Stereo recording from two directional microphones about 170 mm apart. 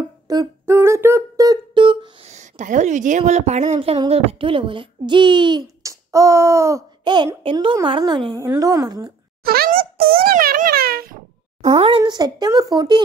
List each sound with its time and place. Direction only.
0.3 s a sound: 20° right (ahead or behind)
2.2 s a woman's voice: 45° right (ahead or behind); by 9.1 s 25° right (ahead or behind)
9.4 s a child's voice: 65° right (ahead or behind)
11.6 s a woman's voice: 35° right (ahead or behind)
12.0 s speech: 25° right (ahead or behind)